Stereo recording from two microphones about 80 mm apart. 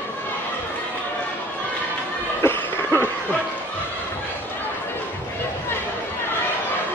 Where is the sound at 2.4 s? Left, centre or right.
Left.